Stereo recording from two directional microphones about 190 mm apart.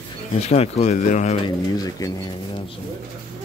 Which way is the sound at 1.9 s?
20° left (ahead or behind).